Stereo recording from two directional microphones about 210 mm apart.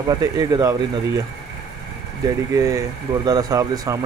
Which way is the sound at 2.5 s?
15° right (ahead or behind).